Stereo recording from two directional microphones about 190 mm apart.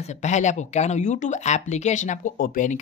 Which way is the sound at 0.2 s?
40° left (ahead or behind).